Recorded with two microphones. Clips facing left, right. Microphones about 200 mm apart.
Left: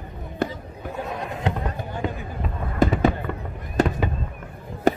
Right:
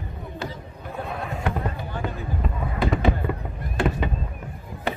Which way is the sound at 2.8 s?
45° left (ahead or behind).